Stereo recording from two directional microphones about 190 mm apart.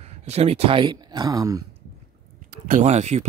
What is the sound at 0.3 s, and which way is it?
Speech, 30° right (ahead or behind).